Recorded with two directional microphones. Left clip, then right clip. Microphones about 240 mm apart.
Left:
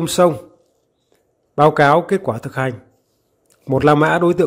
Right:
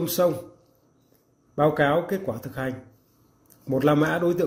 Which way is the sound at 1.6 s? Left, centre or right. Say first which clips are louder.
Left 9 dB; left.